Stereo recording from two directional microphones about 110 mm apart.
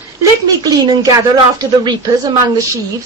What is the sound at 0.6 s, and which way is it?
A man's voice, 40° right (ahead or behind).